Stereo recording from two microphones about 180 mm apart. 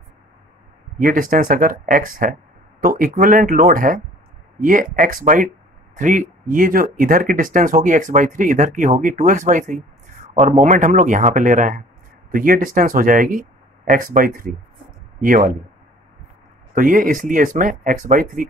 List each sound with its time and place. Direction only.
0.9 s speech: 50° right (ahead or behind)
16.7 s speech: 50° right (ahead or behind)